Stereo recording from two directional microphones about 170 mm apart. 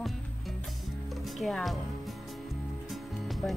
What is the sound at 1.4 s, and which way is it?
Speech, centre (ahead or behind).